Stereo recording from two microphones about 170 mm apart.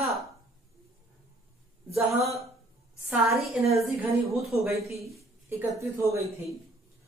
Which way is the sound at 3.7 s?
Centre (ahead or behind).